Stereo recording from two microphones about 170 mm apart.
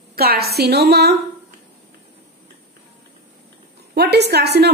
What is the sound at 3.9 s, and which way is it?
Speech, 70° right (ahead or behind).